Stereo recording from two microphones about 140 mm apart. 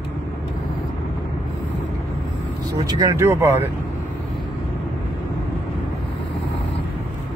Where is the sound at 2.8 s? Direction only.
20° right (ahead or behind).